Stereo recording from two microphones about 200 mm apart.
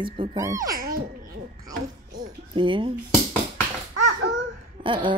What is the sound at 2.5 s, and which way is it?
Speech, 25° right (ahead or behind).